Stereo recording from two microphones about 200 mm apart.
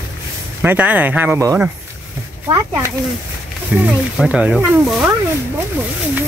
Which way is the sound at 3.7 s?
5° right (ahead or behind).